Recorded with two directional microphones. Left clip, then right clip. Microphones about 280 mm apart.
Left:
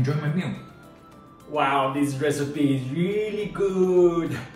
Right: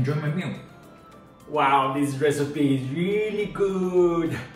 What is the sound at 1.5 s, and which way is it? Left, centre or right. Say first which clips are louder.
Speech: right 2 dB; centre.